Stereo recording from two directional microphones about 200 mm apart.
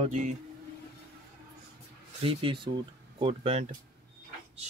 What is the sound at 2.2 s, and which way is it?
Speech, 25° right (ahead or behind).